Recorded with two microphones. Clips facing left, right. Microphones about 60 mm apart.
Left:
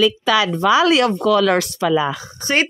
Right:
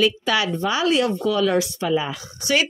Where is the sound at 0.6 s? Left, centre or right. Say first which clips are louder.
Left 6 dB; left.